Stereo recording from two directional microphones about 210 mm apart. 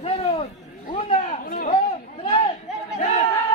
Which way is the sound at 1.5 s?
40° left (ahead or behind).